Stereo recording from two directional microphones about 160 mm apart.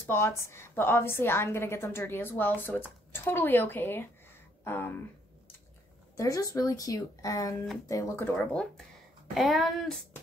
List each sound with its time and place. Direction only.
0.0 s a woman's voice: 15° left (ahead or behind)
6.1 s a woman's voice: 20° left (ahead or behind); by 9.9 s centre (ahead or behind)